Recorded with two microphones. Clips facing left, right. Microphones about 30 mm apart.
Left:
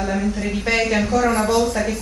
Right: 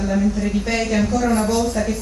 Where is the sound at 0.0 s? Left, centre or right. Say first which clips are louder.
Right 2 dB; centre.